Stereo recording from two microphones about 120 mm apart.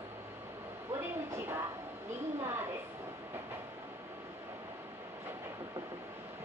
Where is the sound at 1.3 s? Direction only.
20° right (ahead or behind).